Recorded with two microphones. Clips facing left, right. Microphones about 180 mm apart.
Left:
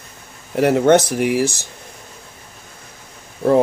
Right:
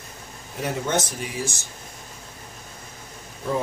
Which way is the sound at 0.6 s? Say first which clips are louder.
Left 13 dB; 70° left (ahead or behind).